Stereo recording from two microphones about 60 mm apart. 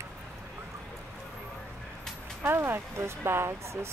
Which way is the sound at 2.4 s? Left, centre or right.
Right.